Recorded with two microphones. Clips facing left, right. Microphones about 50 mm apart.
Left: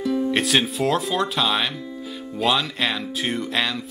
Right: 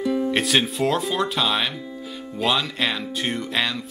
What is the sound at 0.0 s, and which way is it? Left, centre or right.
Speech, centre.